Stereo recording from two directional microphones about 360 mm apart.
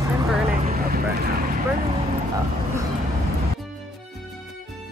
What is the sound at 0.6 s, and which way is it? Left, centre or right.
Vehicle, right.